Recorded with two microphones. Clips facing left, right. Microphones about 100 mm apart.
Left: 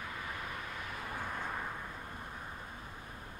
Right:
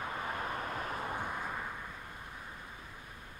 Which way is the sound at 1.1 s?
15° right (ahead or behind).